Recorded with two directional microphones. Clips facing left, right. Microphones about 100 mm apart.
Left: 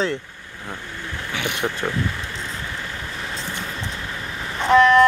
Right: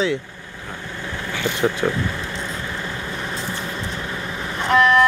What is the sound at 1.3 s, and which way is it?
Speech, 15° left (ahead or behind).